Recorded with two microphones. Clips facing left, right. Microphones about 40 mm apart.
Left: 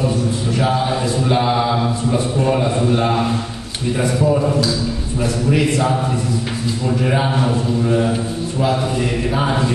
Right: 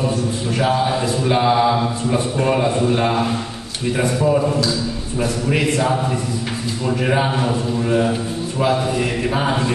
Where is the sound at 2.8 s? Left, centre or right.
Centre.